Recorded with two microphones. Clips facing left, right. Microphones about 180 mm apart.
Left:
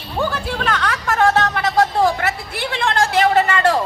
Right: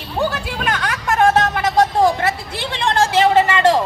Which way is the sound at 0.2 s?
15° right (ahead or behind).